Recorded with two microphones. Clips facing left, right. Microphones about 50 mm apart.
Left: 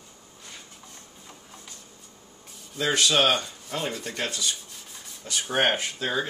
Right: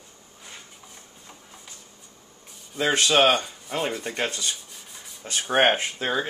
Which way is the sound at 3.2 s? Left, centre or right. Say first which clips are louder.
Right 3 dB; centre.